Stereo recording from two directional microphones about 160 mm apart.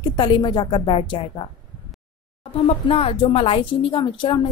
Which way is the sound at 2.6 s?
35° left (ahead or behind).